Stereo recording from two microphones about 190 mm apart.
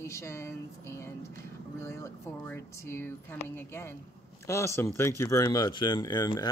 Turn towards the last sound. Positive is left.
turn(degrees=20)  # may be behind; listen again after turning